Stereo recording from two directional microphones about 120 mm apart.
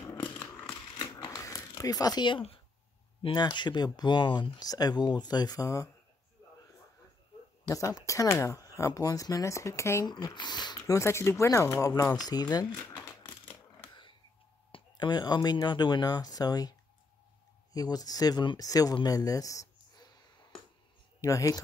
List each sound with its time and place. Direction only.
0.9 s crumpling: 30° left (ahead or behind)
3.2 s speech: 40° left (ahead or behind)
7.6 s speech: 25° left (ahead or behind)
10.0 s speech: 35° left (ahead or behind)
11.0 s speech: 20° left (ahead or behind)
14.7 s speech: 40° left (ahead or behind)
17.7 s speech: 30° left (ahead or behind)
21.2 s speech: 25° left (ahead or behind)